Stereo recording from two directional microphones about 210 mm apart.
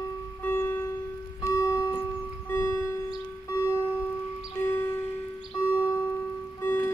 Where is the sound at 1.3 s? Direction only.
20° left (ahead or behind).